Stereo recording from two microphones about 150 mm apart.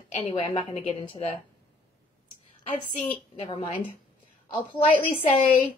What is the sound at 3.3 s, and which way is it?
Speech, 35° left (ahead or behind).